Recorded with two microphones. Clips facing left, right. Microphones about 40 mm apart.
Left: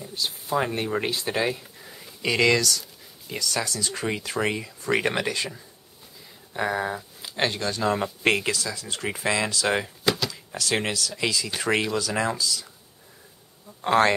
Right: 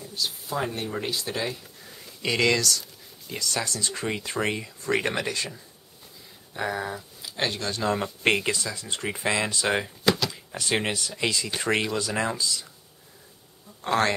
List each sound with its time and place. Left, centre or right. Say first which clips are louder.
0.0 s speech: left 1 dB; left
1.8 s a sound: left 2 dB; centre
3.3 s speech: left 1 dB; centre
3.9 s speech: left 1 dB; centre
7.2 s speech: left 3 dB; left
8.0 s speech: left 1 dB; centre
8.5 s speech: even; centre
9.7 s a sound: right 2 dB; centre
10.9 s speech: left 1 dB; right
11.1 s speech: left 1 dB; centre
12.4 s speech: left 1 dB; right
13.8 s speech: left 4 dB; left